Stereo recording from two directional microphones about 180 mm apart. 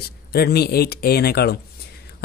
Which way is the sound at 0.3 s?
60° left (ahead or behind).